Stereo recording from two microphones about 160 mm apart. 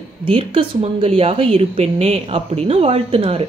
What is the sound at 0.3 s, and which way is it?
Speech, 35° right (ahead or behind).